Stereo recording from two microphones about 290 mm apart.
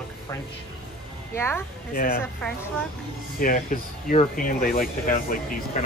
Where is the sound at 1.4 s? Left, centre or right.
Centre.